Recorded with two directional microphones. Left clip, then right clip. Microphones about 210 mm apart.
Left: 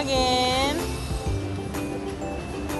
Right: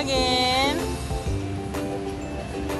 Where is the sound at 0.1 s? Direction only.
15° left (ahead or behind).